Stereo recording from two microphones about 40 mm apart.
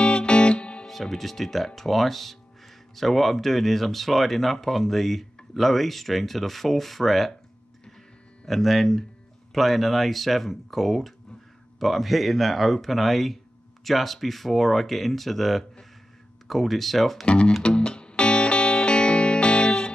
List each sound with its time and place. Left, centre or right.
0.0 s music: left
0.8 s speech: centre
8.5 s speech: centre
17.3 s speech: left
17.6 s music: left